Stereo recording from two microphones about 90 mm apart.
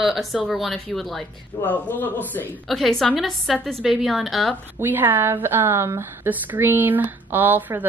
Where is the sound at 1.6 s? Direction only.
20° left (ahead or behind).